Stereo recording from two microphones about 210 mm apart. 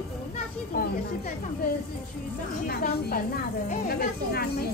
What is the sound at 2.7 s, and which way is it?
Speech, 45° left (ahead or behind).